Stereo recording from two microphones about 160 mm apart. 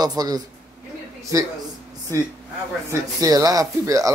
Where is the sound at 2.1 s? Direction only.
20° right (ahead or behind).